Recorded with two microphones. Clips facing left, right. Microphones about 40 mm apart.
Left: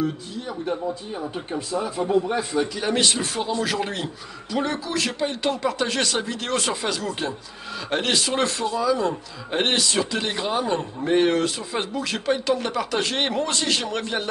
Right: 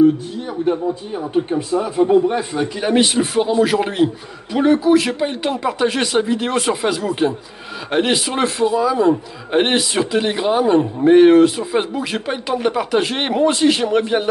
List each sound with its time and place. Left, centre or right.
0.5 s a man's voice: right